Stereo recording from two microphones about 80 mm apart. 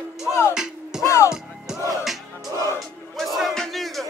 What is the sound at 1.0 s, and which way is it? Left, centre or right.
Music, left.